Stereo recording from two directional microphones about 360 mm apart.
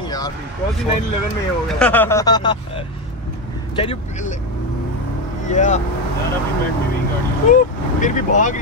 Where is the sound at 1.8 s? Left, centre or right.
Centre.